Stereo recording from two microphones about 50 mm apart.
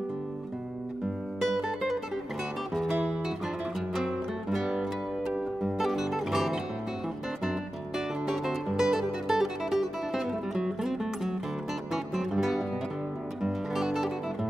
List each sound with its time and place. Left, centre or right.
1.4 s music: centre
8.3 s music: centre